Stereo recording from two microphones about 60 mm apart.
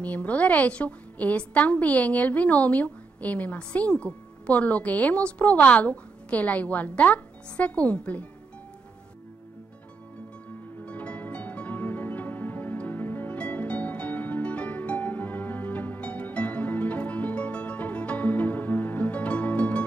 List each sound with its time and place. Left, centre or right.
0.0 s a woman's voice: left
10.9 s music: left